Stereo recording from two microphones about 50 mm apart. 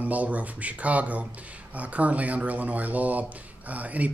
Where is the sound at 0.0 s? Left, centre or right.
Right.